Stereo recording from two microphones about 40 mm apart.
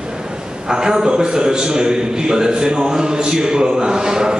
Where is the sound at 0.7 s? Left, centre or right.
Centre.